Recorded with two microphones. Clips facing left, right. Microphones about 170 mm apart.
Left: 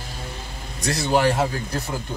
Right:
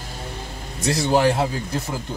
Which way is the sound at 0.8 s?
25° right (ahead or behind).